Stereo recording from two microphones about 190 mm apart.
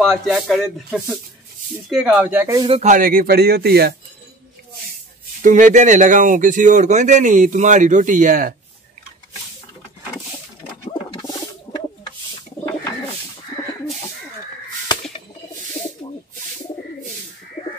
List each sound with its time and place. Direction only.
0.0 s speech: centre (ahead or behind); by 2.8 s 20° right (ahead or behind)
2.8 s speech: 45° right (ahead or behind)
5.4 s speech: 40° right (ahead or behind)
10.9 s bird: 25° left (ahead or behind)